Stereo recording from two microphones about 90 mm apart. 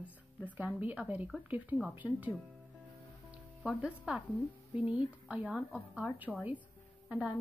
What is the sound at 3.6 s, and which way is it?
Speech, 10° right (ahead or behind).